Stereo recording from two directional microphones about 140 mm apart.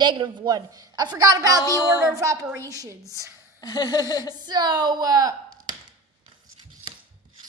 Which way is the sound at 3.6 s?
30° left (ahead or behind).